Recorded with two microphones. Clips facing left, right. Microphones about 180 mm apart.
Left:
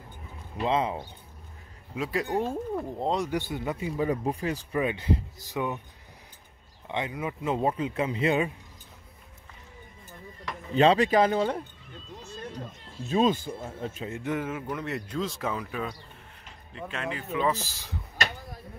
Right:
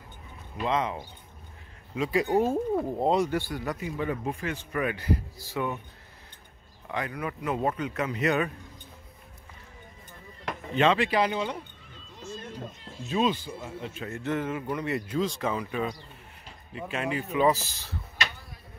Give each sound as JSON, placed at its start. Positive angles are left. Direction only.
{"t": 0.6, "sound": "speech", "side_deg": 30}
{"t": 2.0, "sound": "speech", "side_deg": 0}
{"t": 3.3, "sound": "speech", "side_deg": 20}
{"t": 4.7, "sound": "speech", "side_deg": 25}
{"t": 6.9, "sound": "speech", "side_deg": 25}
{"t": 10.7, "sound": "speech", "side_deg": 35}
{"t": 13.1, "sound": "speech", "side_deg": 45}
{"t": 14.0, "sound": "speech", "side_deg": 15}
{"t": 18.1, "sound": "a sound", "side_deg": 45}